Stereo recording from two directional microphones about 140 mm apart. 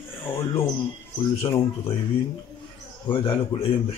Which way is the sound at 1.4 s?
30° left (ahead or behind).